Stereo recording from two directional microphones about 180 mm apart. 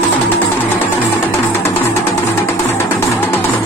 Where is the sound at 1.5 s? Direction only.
15° left (ahead or behind).